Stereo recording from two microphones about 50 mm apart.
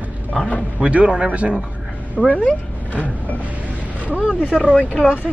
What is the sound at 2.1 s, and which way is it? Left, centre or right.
Speech, left.